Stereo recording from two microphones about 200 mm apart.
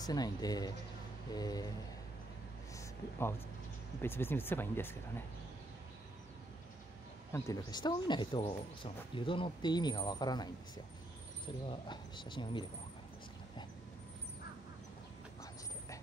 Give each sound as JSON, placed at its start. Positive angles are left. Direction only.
{"t": 0.0, "sound": "speech", "side_deg": 20}
{"t": 2.7, "sound": "speech", "side_deg": 15}
{"t": 7.3, "sound": "speech", "side_deg": 15}